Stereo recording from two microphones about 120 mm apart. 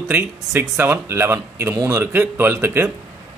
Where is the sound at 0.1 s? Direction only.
15° right (ahead or behind).